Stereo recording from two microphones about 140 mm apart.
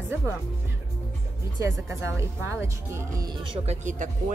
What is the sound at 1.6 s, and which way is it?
A woman's voice, 20° right (ahead or behind).